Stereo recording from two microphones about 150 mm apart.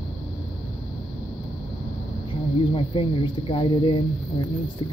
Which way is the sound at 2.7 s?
35° left (ahead or behind).